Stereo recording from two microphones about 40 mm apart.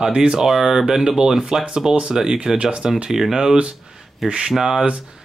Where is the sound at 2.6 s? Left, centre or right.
Right.